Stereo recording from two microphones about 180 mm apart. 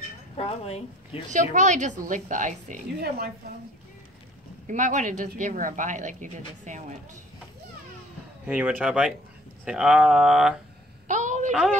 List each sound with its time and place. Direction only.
0.4 s a woman's voice: 35° left (ahead or behind)
1.3 s speech: 45° right (ahead or behind)
4.6 s speech: 45° right (ahead or behind)
8.5 s speech: 10° right (ahead or behind)
11.1 s a sound: 45° right (ahead or behind)